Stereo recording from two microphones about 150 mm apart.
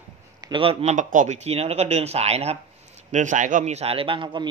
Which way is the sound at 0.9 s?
55° right (ahead or behind).